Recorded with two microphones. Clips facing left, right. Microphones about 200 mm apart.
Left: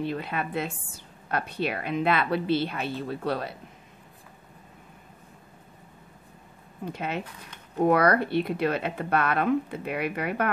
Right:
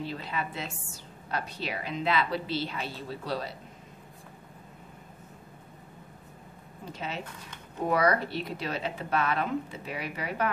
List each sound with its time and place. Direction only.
0.0 s a woman's voice: 60° left (ahead or behind)
6.9 s a woman's voice: 60° left (ahead or behind)